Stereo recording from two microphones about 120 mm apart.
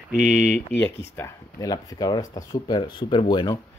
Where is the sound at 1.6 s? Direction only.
35° left (ahead or behind).